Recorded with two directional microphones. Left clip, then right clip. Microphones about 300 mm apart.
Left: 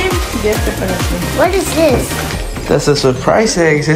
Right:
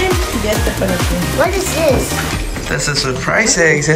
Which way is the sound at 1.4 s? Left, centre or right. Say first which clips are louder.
Left 3 dB; left.